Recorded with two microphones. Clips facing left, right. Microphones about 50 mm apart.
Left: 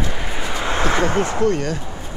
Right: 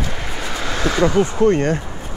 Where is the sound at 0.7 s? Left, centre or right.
Left.